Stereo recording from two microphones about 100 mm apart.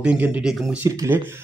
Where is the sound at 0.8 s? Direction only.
30° right (ahead or behind).